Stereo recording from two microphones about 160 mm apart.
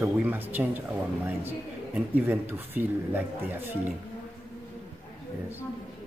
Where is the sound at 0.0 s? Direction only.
10° right (ahead or behind).